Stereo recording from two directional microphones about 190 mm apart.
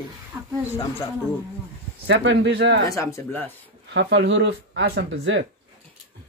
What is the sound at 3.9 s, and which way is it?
Speech, 65° right (ahead or behind).